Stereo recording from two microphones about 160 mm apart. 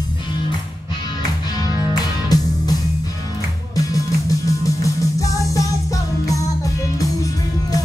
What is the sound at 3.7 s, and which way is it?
Music, 20° left (ahead or behind).